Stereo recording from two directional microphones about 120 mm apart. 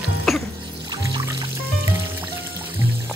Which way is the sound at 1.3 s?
25° right (ahead or behind).